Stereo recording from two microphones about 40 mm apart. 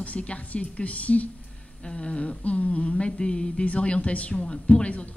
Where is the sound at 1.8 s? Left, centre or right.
Left.